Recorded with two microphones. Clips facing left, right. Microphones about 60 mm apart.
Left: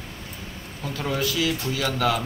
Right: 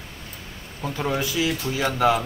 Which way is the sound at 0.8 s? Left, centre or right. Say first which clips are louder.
Right 2 dB; right.